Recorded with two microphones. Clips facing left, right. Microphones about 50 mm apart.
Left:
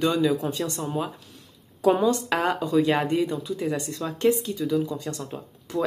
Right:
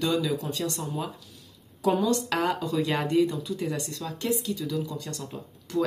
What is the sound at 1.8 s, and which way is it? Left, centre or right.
Speech, left.